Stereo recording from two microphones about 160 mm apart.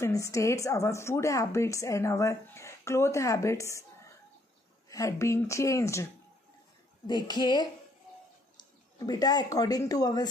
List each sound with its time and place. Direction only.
0.0 s a woman's voice: 20° left (ahead or behind)
4.8 s a woman's voice: 20° left (ahead or behind)
7.1 s a woman's voice: 25° left (ahead or behind)